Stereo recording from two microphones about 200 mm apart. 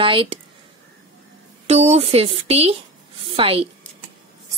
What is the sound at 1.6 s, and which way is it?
A woman's voice, 30° right (ahead or behind).